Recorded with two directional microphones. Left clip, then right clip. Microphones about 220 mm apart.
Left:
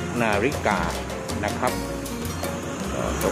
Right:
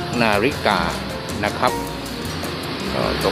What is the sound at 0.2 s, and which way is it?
Speech, centre (ahead or behind).